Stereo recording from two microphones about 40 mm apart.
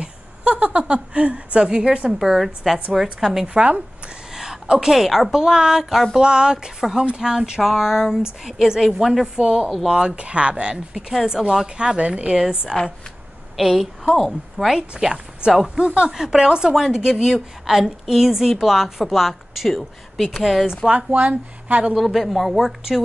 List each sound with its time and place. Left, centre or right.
0.0 s a woman's voice: right
2.1 s a woman's voice: centre
3.4 s speech: right
4.3 s a woman's voice: centre
5.4 s a woman's voice: centre
6.2 s a woman's voice: right
9.4 s speech: right
13.6 s speech: centre
15.0 s a woman's voice: centre
16.1 s a woman's voice: centre
20.9 s speech: right
21.9 s speech: centre